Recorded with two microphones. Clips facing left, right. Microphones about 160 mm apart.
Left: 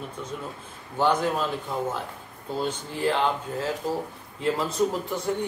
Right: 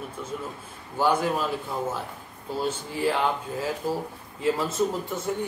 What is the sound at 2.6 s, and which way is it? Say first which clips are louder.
Speech: right 1 dB; 5° right (ahead or behind).